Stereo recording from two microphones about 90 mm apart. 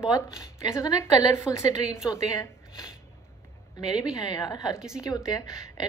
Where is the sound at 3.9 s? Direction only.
50° left (ahead or behind).